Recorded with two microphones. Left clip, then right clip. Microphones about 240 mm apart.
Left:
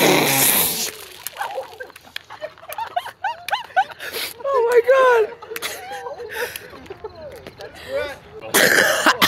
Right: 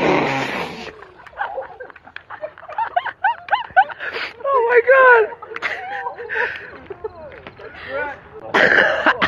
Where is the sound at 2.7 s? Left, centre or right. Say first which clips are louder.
Right 6 dB; centre.